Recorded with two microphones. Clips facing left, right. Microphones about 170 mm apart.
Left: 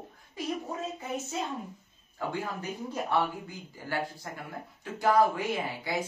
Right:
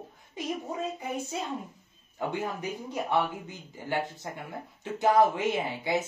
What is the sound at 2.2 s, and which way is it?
Speech, 20° right (ahead or behind).